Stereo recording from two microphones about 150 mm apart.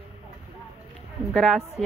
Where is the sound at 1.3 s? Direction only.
Centre (ahead or behind).